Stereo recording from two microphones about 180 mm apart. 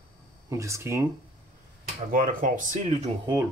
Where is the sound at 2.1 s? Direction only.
45° right (ahead or behind).